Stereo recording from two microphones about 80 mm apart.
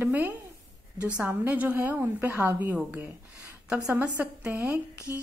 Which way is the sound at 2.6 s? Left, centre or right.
Centre.